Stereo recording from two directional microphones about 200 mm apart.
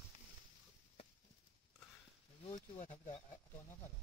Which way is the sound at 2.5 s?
35° left (ahead or behind).